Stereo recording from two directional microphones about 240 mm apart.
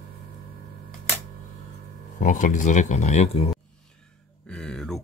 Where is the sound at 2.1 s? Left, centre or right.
Left.